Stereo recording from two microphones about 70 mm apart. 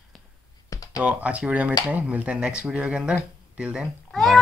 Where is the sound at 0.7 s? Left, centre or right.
Left.